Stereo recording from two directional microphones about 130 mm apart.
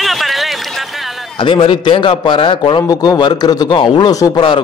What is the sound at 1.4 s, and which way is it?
A man's voice, 40° left (ahead or behind).